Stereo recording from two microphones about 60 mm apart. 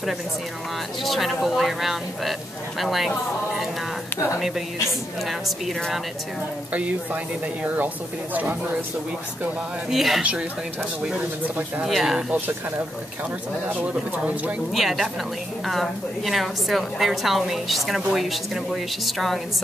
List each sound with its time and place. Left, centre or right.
1.0 s a woman's voice: centre
5.2 s a woman's voice: centre
6.7 s speech: right
9.8 s a woman's voice: centre
11.1 s speech: right
11.8 s a woman's voice: centre
12.3 s speech: right
14.7 s a woman's voice: centre